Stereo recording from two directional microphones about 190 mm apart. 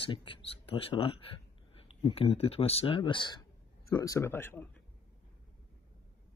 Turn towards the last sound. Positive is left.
turn(degrees=10)  # may be behind; listen again after turning